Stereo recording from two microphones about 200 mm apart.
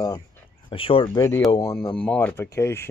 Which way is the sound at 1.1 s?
15° left (ahead or behind).